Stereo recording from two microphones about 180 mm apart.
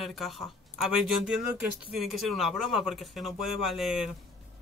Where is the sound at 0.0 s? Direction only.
Centre (ahead or behind).